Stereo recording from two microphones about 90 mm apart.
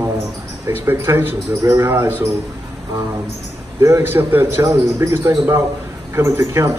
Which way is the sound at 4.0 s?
25° right (ahead or behind).